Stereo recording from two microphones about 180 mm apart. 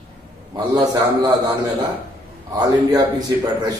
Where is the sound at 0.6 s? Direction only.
25° right (ahead or behind).